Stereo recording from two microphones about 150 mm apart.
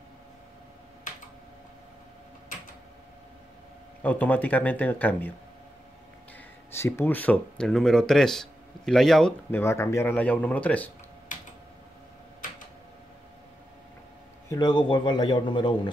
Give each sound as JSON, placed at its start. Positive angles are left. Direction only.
{"t": 1.1, "sound": "computer keyboard", "side_deg": 55}
{"t": 4.0, "sound": "speech", "side_deg": 10}
{"t": 6.3, "sound": "speech", "side_deg": 15}
{"t": 9.5, "sound": "speech", "side_deg": 15}
{"t": 11.3, "sound": "typing", "side_deg": 60}
{"t": 14.5, "sound": "a man's voice", "side_deg": 30}